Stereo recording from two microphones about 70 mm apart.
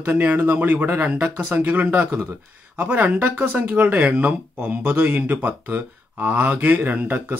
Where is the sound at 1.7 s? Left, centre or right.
Right.